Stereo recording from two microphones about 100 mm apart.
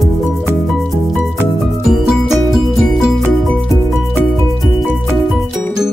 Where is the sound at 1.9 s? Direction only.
5° right (ahead or behind).